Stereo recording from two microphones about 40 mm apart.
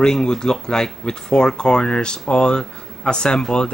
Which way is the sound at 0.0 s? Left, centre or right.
Centre.